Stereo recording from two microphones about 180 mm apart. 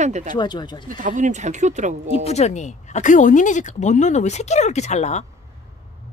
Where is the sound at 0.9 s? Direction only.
45° right (ahead or behind).